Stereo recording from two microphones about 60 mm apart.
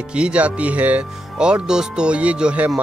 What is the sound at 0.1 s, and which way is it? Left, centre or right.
Speech, centre.